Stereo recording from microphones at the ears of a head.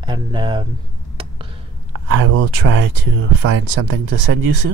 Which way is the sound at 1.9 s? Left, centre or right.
Right.